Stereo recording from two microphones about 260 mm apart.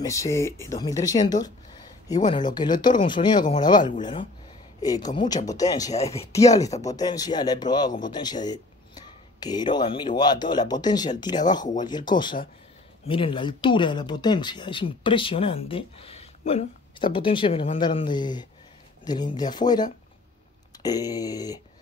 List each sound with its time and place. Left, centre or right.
0.0 s speech: centre
5.9 s speech: left
6.3 s speech: centre